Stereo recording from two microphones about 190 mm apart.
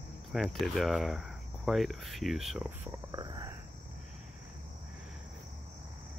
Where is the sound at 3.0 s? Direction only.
20° right (ahead or behind).